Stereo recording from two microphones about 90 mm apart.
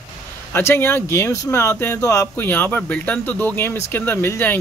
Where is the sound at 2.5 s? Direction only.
20° left (ahead or behind).